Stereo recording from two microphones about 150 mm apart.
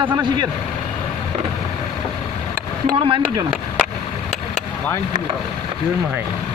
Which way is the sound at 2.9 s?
35° right (ahead or behind).